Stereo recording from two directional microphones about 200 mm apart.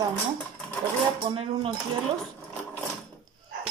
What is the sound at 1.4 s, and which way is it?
Speech, 30° right (ahead or behind).